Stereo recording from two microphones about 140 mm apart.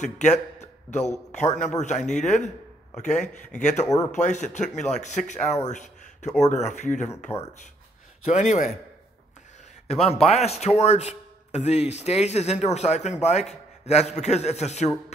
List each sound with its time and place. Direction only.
0.0 s a man's voice: 55° left (ahead or behind)
3.8 s speech: 25° left (ahead or behind)
4.1 s speech: 60° left (ahead or behind)
8.3 s speech: 55° left (ahead or behind)
10.0 s speech: 45° left (ahead or behind)